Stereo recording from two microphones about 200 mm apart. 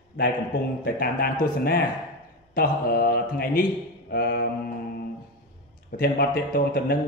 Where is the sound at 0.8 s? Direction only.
50° left (ahead or behind).